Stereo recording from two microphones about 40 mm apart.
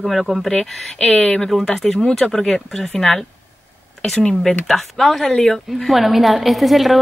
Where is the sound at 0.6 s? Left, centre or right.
Left.